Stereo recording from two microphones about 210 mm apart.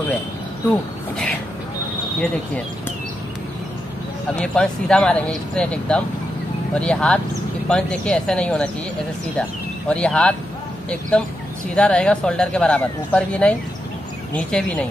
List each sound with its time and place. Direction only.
4.4 s speech: 5° left (ahead or behind)
9.8 s speech: 5° left (ahead or behind)